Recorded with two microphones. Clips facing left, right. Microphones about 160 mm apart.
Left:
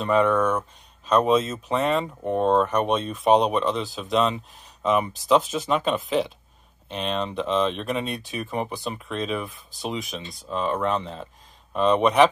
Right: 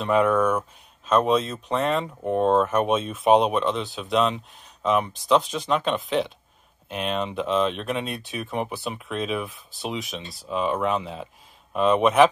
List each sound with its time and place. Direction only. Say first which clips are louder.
0.0 s speech: even; 5° right (ahead or behind)